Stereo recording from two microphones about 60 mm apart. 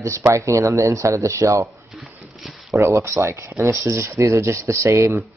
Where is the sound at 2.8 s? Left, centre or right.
Right.